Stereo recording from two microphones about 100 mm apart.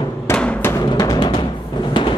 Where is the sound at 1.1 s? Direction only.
55° left (ahead or behind).